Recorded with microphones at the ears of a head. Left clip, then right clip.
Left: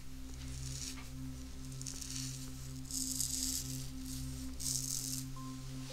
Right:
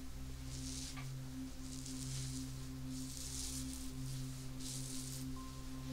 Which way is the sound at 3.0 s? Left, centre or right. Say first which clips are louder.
Left 11 dB; left.